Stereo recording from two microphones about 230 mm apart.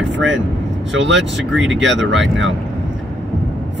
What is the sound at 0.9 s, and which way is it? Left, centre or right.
Speech, right.